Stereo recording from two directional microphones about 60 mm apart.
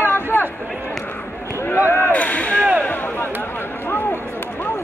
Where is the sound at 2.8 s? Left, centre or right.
Left.